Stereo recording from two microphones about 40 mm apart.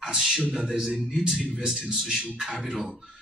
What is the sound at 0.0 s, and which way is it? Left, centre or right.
Speech, centre.